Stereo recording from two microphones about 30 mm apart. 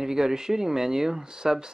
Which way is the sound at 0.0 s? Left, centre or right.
Centre.